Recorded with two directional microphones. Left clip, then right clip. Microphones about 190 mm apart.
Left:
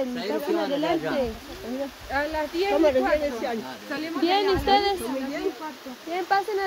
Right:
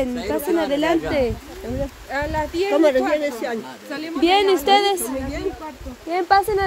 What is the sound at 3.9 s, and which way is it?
A woman's voice, 40° right (ahead or behind).